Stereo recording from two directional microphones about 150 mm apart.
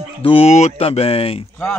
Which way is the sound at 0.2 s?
40° left (ahead or behind).